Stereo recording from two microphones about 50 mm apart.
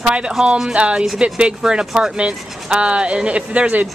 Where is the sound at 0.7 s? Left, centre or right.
Right.